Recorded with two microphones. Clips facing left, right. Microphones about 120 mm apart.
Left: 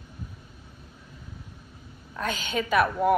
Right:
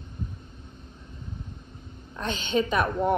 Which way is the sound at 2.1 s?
30° right (ahead or behind).